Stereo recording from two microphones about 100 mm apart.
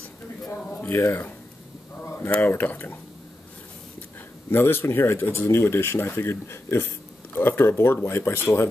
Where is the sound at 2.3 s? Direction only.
20° left (ahead or behind).